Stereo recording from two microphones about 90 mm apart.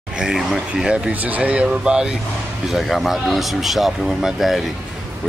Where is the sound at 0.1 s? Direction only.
5° right (ahead or behind).